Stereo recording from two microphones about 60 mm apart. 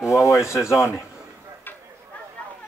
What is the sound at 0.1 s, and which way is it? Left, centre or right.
Speech, left.